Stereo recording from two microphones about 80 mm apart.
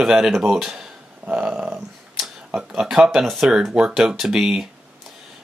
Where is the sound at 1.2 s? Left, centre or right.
Centre.